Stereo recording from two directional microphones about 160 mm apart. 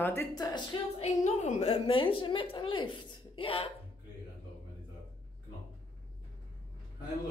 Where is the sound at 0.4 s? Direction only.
25° left (ahead or behind).